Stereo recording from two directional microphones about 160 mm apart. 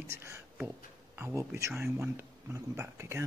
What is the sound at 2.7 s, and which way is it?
Speech, 15° right (ahead or behind).